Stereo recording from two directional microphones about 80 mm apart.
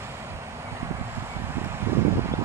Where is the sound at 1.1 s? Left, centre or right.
Right.